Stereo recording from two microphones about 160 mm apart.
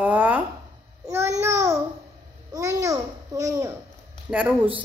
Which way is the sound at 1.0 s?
15° right (ahead or behind).